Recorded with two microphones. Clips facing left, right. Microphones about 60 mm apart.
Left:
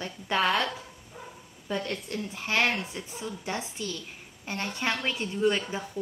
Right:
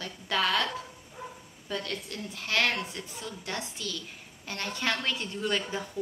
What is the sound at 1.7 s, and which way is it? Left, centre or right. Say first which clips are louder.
Speech: left 3 dB; left.